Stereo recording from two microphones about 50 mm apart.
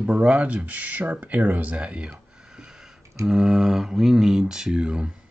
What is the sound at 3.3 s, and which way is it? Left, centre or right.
Speech, centre.